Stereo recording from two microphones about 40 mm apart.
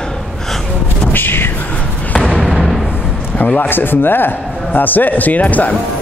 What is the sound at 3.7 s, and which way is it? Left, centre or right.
A man's voice, left.